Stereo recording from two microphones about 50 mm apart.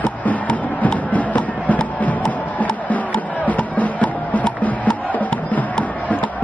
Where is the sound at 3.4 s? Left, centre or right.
Left.